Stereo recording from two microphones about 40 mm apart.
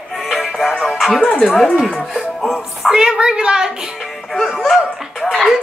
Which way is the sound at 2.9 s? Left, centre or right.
Centre.